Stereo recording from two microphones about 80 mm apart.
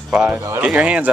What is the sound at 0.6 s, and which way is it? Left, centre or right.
Speech, centre.